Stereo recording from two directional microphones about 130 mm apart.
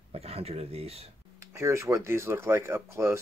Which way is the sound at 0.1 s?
50° right (ahead or behind).